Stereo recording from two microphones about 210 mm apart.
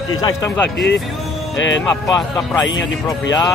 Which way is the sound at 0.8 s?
55° left (ahead or behind).